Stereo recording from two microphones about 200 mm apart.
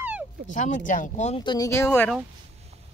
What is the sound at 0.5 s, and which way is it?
Speech, 40° left (ahead or behind).